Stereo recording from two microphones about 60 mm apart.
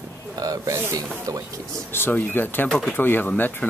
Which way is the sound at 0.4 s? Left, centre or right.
Right.